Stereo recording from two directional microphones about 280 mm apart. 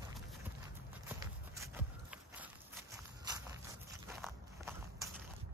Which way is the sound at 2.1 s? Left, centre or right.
Centre.